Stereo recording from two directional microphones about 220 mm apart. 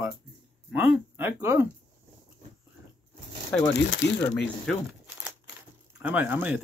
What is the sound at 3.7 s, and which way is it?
Speech, 50° left (ahead or behind).